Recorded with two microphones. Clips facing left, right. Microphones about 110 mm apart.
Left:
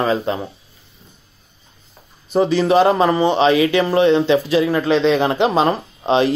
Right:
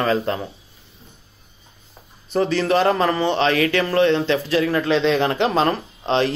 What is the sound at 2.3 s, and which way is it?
A man's voice, 15° left (ahead or behind).